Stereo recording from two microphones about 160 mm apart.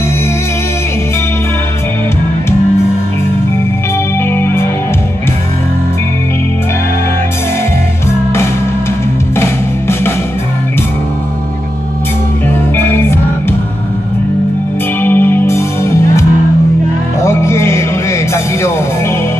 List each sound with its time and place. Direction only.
4.4 s music: 15° left (ahead or behind)
9.4 s music: 15° left (ahead or behind)
12.7 s music: 15° left (ahead or behind)
15.0 s music: 10° left (ahead or behind)